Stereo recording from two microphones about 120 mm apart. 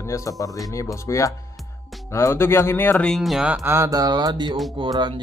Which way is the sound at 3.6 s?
25° right (ahead or behind).